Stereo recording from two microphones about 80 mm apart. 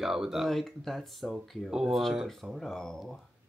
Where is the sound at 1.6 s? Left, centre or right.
Centre.